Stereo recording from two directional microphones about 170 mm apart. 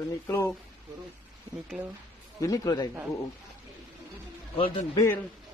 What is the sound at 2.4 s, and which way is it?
Speech, 20° left (ahead or behind).